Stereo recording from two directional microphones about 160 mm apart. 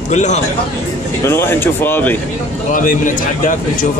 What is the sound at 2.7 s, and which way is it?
A man's voice, 55° left (ahead or behind).